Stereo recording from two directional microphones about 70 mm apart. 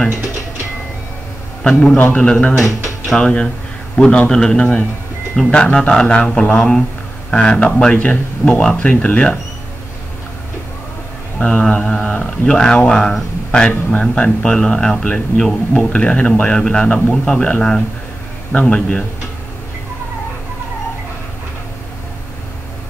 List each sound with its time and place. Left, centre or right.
1.6 s a man's voice: centre
2.0 s a man's voice: left
11.3 s speech: centre